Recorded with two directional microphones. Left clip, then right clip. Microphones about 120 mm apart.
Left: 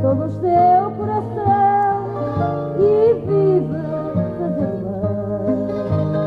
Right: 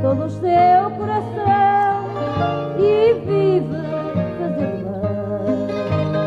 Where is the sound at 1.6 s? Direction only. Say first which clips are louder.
Even; 30° right (ahead or behind).